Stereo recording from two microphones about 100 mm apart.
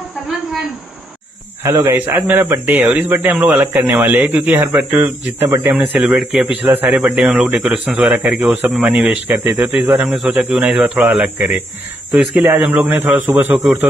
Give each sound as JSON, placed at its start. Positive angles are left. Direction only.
{"t": 1.6, "sound": "speech", "side_deg": -25}
{"t": 5.8, "sound": "speech", "side_deg": -15}
{"t": 6.9, "sound": "a man's voice", "side_deg": -5}
{"t": 9.8, "sound": "speech", "side_deg": -5}